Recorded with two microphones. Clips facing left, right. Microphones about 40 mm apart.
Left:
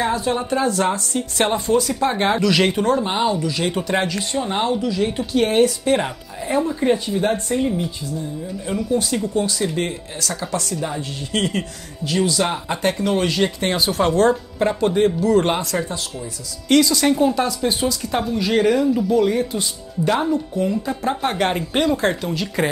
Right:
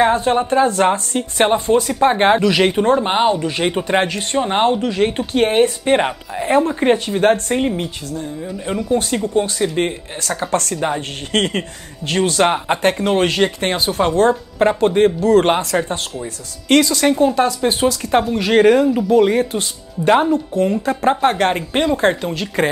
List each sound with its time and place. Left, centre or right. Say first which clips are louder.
0.0 s speech: right 6 dB; right
2.5 s speech: right 2 dB; centre
2.8 s speech: right 4 dB; right
8.9 s speech: right 4 dB; right
10.5 s speech: right 7 dB; right
16.8 s speech: right 2 dB; right
17.4 s speech: right 4 dB; right
21.5 s speech: right 2 dB; centre